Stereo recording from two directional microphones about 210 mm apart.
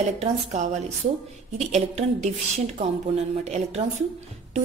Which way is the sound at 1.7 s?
35° right (ahead or behind).